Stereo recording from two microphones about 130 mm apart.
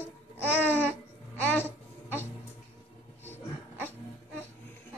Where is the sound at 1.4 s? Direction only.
15° left (ahead or behind).